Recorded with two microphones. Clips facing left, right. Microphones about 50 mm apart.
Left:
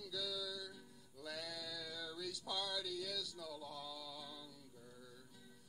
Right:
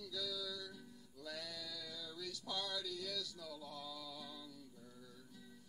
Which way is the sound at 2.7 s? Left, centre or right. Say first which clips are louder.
Left 1 dB; centre.